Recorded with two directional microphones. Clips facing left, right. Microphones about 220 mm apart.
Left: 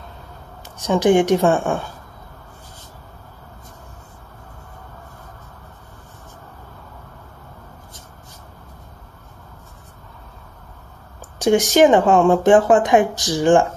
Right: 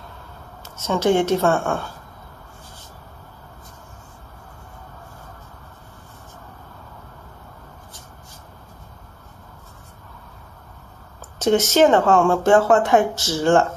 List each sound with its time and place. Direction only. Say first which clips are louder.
0.7 s speech: left 3 dB; 15° left (ahead or behind)
11.3 s speech: left 2 dB; 15° left (ahead or behind)